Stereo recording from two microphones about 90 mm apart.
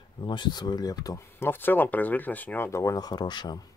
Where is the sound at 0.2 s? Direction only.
60° left (ahead or behind); by 1.2 s 45° left (ahead or behind).